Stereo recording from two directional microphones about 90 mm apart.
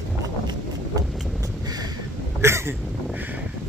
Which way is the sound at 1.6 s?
45° right (ahead or behind).